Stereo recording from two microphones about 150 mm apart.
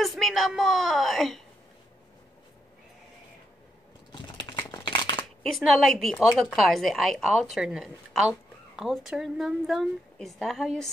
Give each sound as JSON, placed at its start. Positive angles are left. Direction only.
{"t": 0.0, "sound": "a woman's voice", "side_deg": 0}
{"t": 4.1, "sound": "typing", "side_deg": 30}
{"t": 4.6, "sound": "shuffling cards", "side_deg": 30}
{"t": 5.4, "sound": "a woman's voice", "side_deg": 0}